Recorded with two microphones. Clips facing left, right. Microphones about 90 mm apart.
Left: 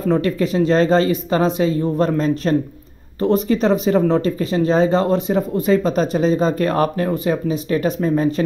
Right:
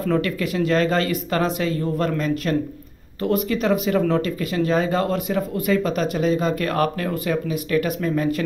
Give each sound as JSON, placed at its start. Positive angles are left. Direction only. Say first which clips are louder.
{"t": 0.0, "sound": "speech", "louder": "left 4 dB", "side_deg": 25}